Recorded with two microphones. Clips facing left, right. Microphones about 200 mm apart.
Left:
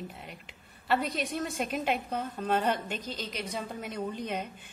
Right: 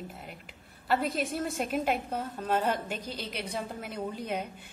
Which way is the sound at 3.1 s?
60° right (ahead or behind).